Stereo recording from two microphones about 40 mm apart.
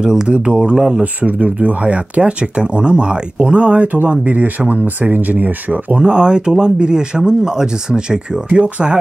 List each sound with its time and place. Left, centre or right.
0.0 s speech: right
1.2 s speech: right
5.9 s speech: right
8.5 s speech: right